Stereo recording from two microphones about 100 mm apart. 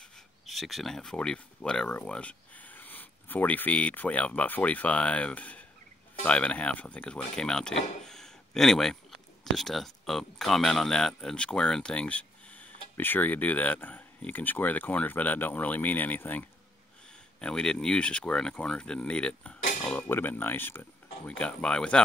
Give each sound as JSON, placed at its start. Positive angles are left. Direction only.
{"t": 0.5, "sound": "speech", "side_deg": 0}
{"t": 20.0, "sound": "speech", "side_deg": 20}